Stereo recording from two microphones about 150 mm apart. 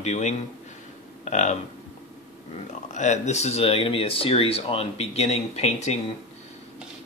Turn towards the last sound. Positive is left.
turn(degrees=45)  # may be behind; listen again after turning